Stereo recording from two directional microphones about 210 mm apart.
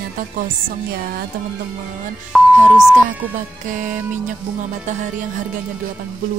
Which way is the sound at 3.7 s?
35° right (ahead or behind).